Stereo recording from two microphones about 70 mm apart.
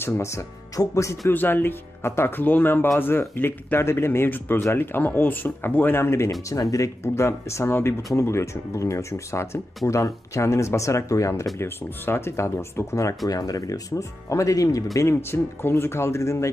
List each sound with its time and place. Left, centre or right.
0.0 s speech: left
1.3 s speech: left
6.5 s speech: left
7.0 s speech: left
11.5 s speech: left
13.3 s speech: left
15.0 s speech: left